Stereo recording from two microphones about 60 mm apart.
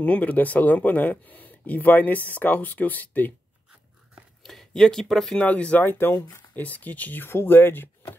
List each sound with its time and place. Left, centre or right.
0.0 s speech: left
4.5 s speech: centre
5.4 s speech: left
6.5 s speech: left